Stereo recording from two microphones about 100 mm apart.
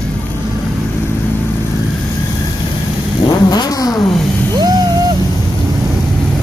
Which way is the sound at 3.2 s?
40° left (ahead or behind).